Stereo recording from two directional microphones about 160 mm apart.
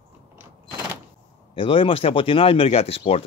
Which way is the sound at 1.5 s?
35° left (ahead or behind).